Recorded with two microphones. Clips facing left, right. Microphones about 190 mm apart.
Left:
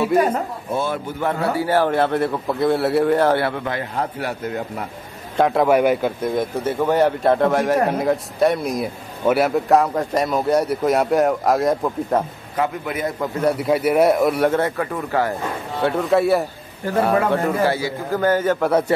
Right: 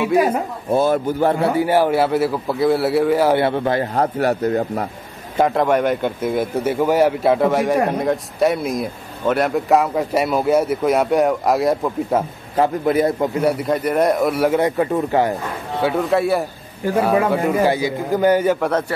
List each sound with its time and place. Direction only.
0.7 s a man's voice: 40° right (ahead or behind)
1.4 s a man's voice: 20° right (ahead or behind); by 3.3 s 5° right (ahead or behind)
3.3 s a man's voice: 25° right (ahead or behind); by 4.8 s 40° right (ahead or behind)
5.4 s a man's voice: centre (ahead or behind)
6.2 s a man's voice: 10° right (ahead or behind)
12.5 s a man's voice: 35° right (ahead or behind)
13.4 s a man's voice: centre (ahead or behind)
14.6 s speech: 25° right (ahead or behind)
15.8 s a man's voice: centre (ahead or behind)
18.6 s a man's voice: 5° left (ahead or behind)